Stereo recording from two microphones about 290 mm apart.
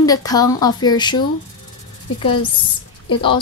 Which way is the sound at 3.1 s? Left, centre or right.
Centre.